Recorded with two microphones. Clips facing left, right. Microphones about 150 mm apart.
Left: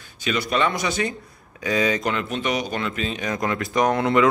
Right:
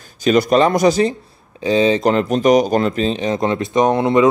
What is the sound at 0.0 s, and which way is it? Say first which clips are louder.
Speech: right 11 dB; 40° right (ahead or behind).